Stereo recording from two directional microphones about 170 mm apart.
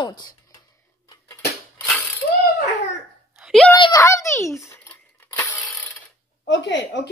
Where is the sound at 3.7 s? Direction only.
25° left (ahead or behind).